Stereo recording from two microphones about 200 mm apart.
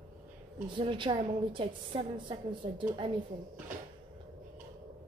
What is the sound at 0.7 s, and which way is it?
A woman's voice, 25° right (ahead or behind).